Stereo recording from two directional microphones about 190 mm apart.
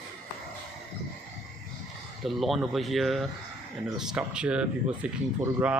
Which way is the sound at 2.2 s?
Centre (ahead or behind).